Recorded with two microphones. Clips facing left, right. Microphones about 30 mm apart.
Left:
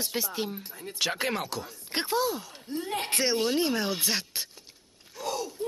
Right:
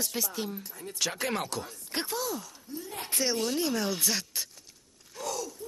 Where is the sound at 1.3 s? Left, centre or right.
Centre.